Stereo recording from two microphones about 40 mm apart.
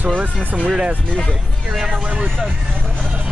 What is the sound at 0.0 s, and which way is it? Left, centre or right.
Speech, right.